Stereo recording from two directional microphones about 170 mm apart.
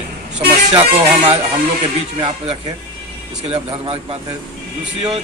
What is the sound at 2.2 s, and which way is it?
A man's voice, 25° right (ahead or behind).